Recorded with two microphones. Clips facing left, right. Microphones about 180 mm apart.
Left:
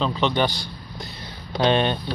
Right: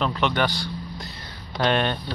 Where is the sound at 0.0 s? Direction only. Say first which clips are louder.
Left 2 dB; 20° left (ahead or behind).